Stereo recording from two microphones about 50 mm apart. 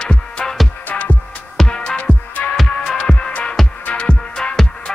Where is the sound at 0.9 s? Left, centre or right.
Left.